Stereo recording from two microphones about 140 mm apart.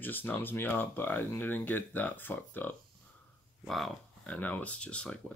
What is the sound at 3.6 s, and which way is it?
Speech, centre (ahead or behind).